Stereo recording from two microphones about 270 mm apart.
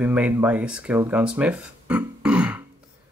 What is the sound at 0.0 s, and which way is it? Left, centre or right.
Speech, centre.